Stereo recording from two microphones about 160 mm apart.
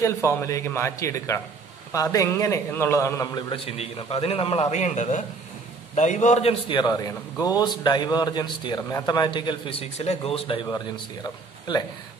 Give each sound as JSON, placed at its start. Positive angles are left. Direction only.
{"t": 0.0, "sound": "a man's voice", "side_deg": 15}
{"t": 6.7, "sound": "a man's voice", "side_deg": 25}
{"t": 11.2, "sound": "speech", "side_deg": 25}